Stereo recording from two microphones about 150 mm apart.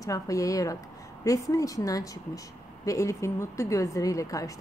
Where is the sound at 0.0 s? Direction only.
20° left (ahead or behind).